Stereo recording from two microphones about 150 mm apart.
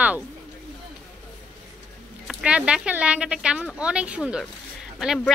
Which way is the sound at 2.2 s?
5° right (ahead or behind).